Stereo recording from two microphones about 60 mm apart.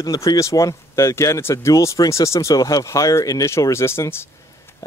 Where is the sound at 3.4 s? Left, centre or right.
Left.